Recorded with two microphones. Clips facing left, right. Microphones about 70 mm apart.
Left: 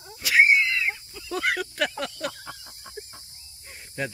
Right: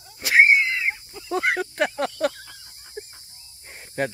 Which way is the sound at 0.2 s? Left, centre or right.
Right.